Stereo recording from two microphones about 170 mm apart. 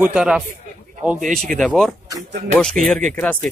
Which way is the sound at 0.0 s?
5° right (ahead or behind).